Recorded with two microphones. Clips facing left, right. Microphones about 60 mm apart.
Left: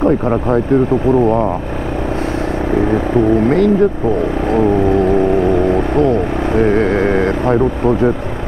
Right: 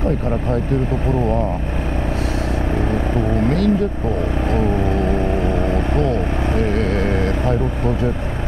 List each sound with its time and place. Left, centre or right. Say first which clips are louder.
0.0 s speech: left 7 dB; left
3.4 s speech: left 6 dB; left
4.5 s vehicle: left 8 dB; left
5.7 s speech: left 6 dB; left